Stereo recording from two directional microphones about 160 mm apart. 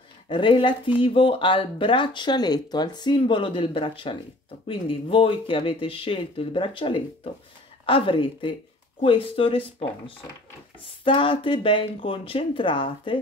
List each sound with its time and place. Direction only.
0.3 s speech: 30° left (ahead or behind)